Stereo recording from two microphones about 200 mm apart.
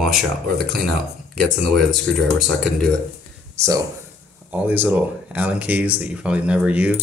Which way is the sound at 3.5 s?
15° right (ahead or behind).